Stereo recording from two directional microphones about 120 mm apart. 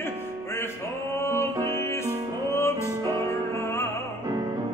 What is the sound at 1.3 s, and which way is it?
Music, 20° left (ahead or behind).